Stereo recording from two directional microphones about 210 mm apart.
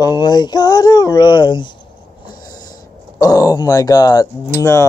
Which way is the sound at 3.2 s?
15° left (ahead or behind).